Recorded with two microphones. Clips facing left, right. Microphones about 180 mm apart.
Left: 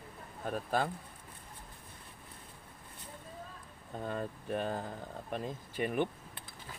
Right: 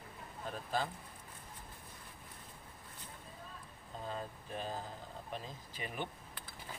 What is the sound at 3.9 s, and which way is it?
Speech, 60° left (ahead or behind).